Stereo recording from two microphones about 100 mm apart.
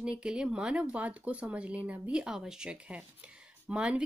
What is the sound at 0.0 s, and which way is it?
A woman's voice, 10° right (ahead or behind).